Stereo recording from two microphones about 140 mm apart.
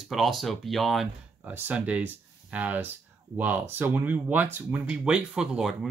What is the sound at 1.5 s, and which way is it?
Speech, 10° right (ahead or behind).